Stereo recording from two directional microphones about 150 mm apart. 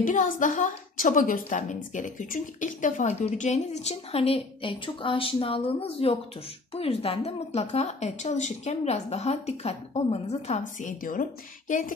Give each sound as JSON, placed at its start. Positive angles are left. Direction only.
{"t": 0.0, "sound": "a woman's voice", "side_deg": 60}